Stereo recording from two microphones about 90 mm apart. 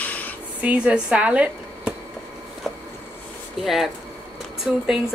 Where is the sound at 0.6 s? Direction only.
15° right (ahead or behind).